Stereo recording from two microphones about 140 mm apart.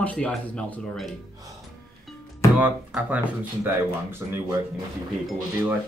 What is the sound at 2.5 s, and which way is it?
Speech, 10° right (ahead or behind).